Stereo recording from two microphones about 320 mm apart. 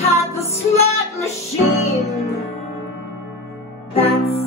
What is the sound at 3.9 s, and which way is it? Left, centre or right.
Music, centre.